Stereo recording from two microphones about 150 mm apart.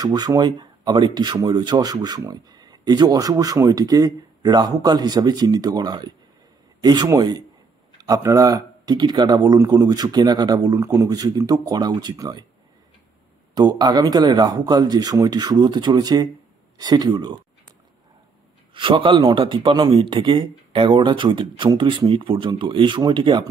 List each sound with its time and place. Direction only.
0.0 s speech: 25° right (ahead or behind)
13.6 s speech: 25° right (ahead or behind)
18.7 s speech: 35° right (ahead or behind)